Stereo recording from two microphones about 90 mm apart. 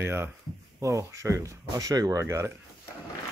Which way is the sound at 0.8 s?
35° right (ahead or behind).